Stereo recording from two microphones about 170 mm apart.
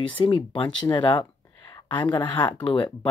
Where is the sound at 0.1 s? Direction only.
30° left (ahead or behind).